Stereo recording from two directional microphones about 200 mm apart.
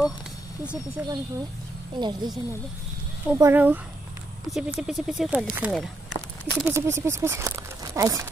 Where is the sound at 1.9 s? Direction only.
20° right (ahead or behind).